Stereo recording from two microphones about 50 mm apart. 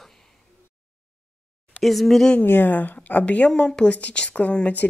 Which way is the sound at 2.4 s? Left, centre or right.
Left.